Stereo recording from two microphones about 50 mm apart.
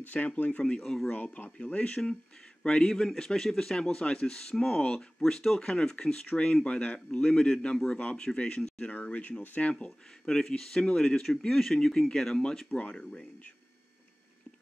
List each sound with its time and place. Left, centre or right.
0.0 s a man's voice: left
0.7 s speech: centre
1.1 s a man's voice: left; by 5.0 s centre
5.2 s a man's voice: centre
8.9 s speech: left; by 12.6 s centre
12.6 s speech: left
12.9 s a man's voice: centre